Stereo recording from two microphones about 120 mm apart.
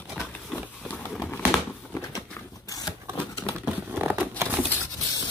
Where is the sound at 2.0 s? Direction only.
30° left (ahead or behind).